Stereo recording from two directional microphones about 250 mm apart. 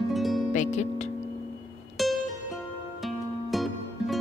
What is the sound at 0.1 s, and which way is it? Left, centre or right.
Music, centre.